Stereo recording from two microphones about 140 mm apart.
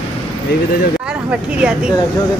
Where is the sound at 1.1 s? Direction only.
5° right (ahead or behind).